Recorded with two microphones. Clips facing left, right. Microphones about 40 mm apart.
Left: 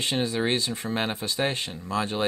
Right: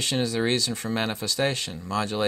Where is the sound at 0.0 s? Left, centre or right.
Left.